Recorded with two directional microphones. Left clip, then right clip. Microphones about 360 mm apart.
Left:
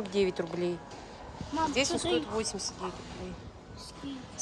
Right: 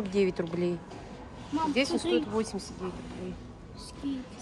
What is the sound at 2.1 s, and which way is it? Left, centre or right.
Speech, centre.